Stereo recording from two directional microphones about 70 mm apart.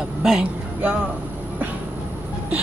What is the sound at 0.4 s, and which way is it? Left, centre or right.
Speech, right.